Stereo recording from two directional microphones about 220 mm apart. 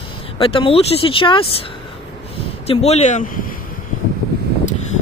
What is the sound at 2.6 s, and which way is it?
Speech, 30° left (ahead or behind).